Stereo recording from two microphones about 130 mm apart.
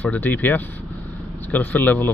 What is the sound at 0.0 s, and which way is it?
Speech, 15° left (ahead or behind).